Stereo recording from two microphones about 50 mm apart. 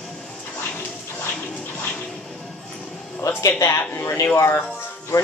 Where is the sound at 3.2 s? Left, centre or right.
Left.